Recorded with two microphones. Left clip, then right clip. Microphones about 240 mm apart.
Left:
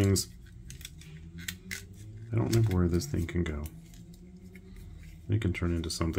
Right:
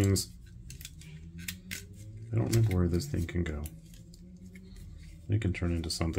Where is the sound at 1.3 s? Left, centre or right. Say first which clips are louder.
Left 2 dB; centre.